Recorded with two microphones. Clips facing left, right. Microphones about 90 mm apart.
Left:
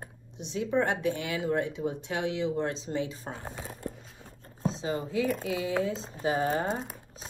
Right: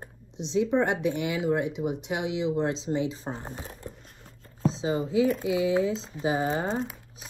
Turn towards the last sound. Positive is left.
turn(degrees=-20)  # may be behind; listen again after turning